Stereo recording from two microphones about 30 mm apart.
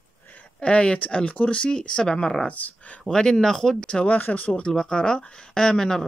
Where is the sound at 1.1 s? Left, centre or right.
Left.